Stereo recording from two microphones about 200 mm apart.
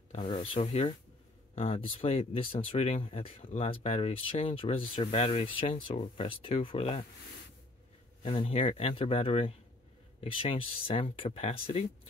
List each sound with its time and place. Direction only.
0.1 s a sound: 30° left (ahead or behind)
0.6 s speech: 25° left (ahead or behind)
8.2 s speech: 25° left (ahead or behind)